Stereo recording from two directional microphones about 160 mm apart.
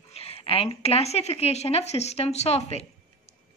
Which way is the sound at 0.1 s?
40° left (ahead or behind).